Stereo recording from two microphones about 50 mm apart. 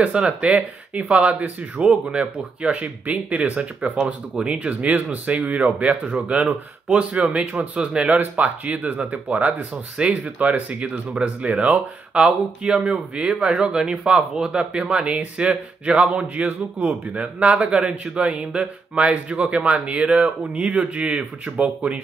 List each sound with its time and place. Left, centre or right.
0.0 s speech: right
4.0 s speech: centre
4.6 s speech: right